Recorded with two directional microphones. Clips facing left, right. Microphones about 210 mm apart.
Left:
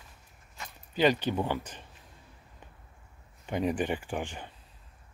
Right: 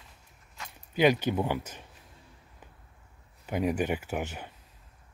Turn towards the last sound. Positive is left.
turn(degrees=-10)  # may be behind; listen again after turning